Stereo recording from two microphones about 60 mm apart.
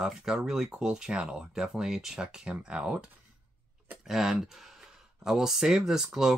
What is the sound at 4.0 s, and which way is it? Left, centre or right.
Speech, centre.